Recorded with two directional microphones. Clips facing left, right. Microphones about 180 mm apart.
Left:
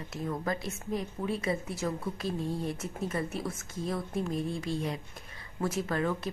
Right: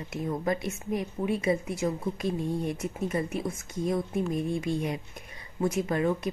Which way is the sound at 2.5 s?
Centre (ahead or behind).